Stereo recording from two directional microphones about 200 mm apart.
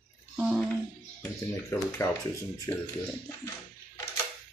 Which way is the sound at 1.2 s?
15° left (ahead or behind).